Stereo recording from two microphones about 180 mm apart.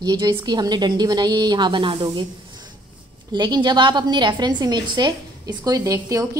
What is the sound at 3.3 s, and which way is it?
A woman's voice, 25° right (ahead or behind).